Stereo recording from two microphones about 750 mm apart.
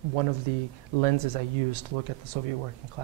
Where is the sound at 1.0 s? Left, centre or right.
Right.